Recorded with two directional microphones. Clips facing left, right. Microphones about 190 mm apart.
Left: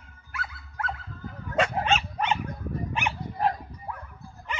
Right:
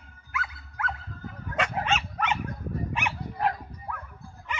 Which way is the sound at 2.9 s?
30° left (ahead or behind).